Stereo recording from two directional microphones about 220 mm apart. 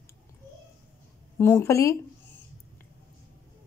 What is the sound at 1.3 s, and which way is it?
Speech, 10° left (ahead or behind).